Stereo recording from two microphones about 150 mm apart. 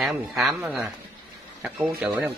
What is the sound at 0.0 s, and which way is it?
Speech, centre (ahead or behind).